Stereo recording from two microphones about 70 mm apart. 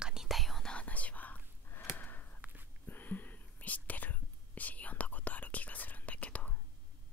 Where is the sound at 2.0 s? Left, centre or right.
Left.